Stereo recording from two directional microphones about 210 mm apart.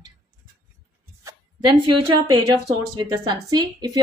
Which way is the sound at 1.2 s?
20° right (ahead or behind).